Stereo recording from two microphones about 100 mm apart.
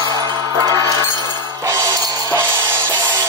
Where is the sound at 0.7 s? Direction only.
35° left (ahead or behind).